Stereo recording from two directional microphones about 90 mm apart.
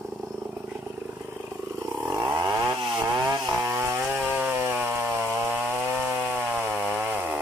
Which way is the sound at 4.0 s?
20° right (ahead or behind).